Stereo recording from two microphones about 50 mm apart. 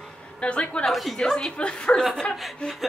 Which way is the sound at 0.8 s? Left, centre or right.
Centre.